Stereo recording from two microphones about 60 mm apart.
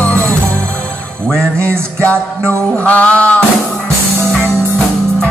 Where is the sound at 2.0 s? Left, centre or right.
Left.